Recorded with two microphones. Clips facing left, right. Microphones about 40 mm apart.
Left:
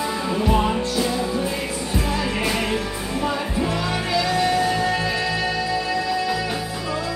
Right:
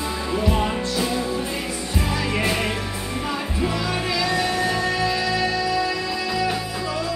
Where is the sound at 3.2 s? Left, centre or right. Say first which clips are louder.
Left 2 dB; centre.